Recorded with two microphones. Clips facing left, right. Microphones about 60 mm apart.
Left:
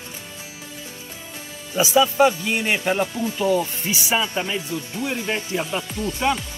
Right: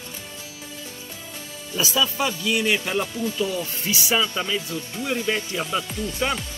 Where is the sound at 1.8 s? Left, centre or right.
Left.